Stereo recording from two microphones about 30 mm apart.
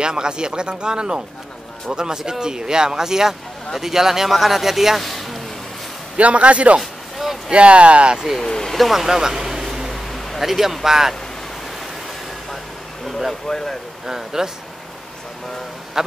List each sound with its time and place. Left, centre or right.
0.0 s speech: right; by 5.4 s centre
6.1 s a man's voice: right
6.8 s a sound: centre
7.5 s speech: right
8.4 s speech: centre
8.7 s speech: centre
9.0 s speech: centre
9.5 s a sound: centre
10.4 s speech: centre
13.3 s speech: centre
14.0 s speech: centre